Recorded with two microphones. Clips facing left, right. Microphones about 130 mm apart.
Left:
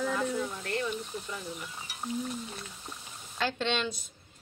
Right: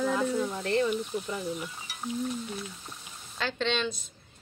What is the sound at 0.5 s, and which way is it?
Speech, 30° right (ahead or behind).